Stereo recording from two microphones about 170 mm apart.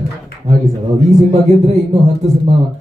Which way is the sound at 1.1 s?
40° right (ahead or behind).